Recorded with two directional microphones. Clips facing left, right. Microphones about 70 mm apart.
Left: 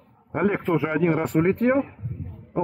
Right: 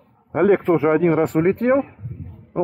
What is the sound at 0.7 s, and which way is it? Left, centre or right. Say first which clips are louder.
Speech: right 6 dB; right.